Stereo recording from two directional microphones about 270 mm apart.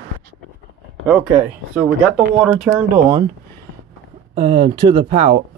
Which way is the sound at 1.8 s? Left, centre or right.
Centre.